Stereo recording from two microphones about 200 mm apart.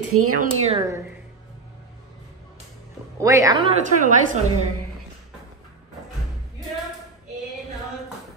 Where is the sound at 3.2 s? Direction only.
15° right (ahead or behind).